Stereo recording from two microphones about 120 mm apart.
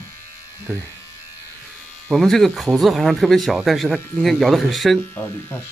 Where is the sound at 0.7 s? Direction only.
20° left (ahead or behind).